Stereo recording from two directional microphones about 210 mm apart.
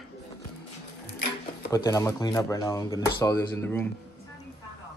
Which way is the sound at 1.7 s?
15° left (ahead or behind).